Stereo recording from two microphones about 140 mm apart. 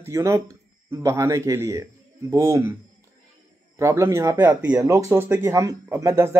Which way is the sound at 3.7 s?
20° right (ahead or behind).